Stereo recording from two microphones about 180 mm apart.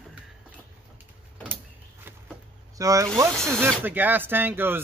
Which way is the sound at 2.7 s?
20° right (ahead or behind).